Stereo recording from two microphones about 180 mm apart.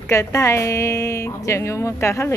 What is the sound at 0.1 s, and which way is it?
A woman's voice, 15° left (ahead or behind).